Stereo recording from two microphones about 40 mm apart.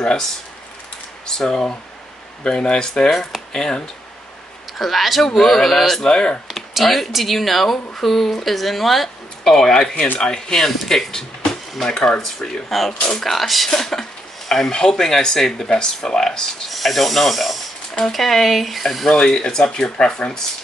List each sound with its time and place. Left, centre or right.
0.0 s speech: left
3.1 s speech: centre
3.5 s speech: centre
4.7 s speech: centre
6.0 s speech: centre
6.4 s speech: centre
9.6 s speech: centre
12.6 s speech: centre
19.0 s speech: centre